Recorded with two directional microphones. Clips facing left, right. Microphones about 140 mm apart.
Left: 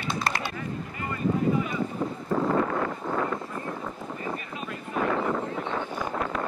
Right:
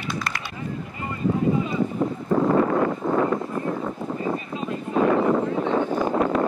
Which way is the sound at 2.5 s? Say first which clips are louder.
Right 6 dB; 40° right (ahead or behind).